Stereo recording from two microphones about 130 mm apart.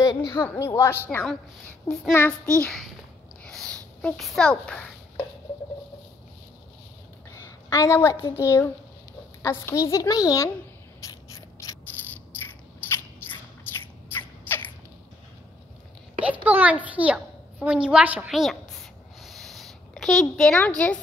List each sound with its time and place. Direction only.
0.0 s a woman's voice: 30° left (ahead or behind)
0.4 s speech: 20° left (ahead or behind)
2.6 s a child's voice: centre (ahead or behind)
3.4 s a sound: 5° left (ahead or behind)
7.2 s a woman's voice: 25° left (ahead or behind)
11.0 s mechanisms: 25° left (ahead or behind)
12.9 s a sound: 15° left (ahead or behind)
16.2 s a child's voice: 10° right (ahead or behind)
19.2 s a sound: centre (ahead or behind)